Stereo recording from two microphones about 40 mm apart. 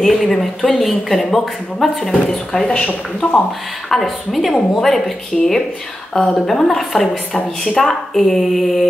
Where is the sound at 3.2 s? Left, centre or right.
Left.